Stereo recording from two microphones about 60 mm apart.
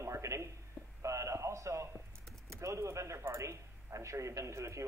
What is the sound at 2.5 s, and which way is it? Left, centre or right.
Speech, right.